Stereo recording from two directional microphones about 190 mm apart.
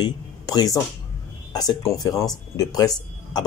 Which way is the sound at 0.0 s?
20° left (ahead or behind).